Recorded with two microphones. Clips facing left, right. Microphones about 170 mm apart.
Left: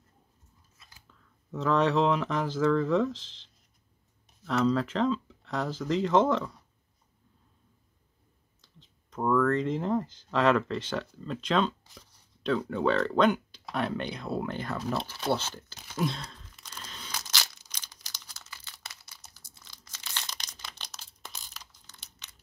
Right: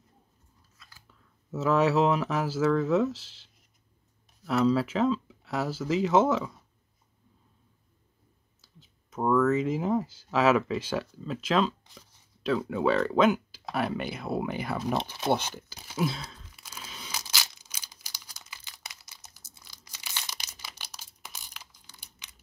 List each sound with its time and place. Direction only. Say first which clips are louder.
0.7 s scissors: right 2 dB; 20° left (ahead or behind)
1.0 s speech: even; 5° right (ahead or behind)
4.5 s speech: right 2 dB; 5° right (ahead or behind)
8.5 s speech: right 1 dB; 5° right (ahead or behind)
12.4 s a sound: right 1 dB; 5° right (ahead or behind)